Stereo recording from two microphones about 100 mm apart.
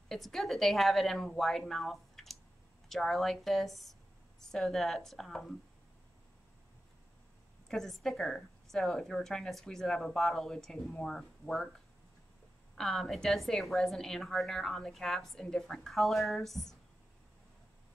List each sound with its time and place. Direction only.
0.1 s a woman's voice: 5° left (ahead or behind)
7.6 s a woman's voice: 5° left (ahead or behind)
12.7 s a woman's voice: 5° left (ahead or behind)